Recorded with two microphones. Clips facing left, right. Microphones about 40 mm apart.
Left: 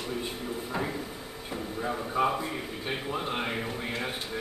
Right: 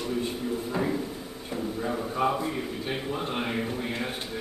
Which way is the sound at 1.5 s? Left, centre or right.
Centre.